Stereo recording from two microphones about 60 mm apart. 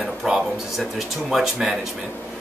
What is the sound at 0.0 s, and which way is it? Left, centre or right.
Speech, centre.